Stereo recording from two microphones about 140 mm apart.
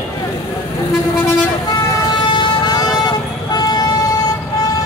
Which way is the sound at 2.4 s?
30° left (ahead or behind).